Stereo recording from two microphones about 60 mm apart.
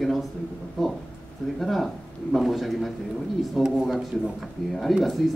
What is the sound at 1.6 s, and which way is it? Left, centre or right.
Speech, centre.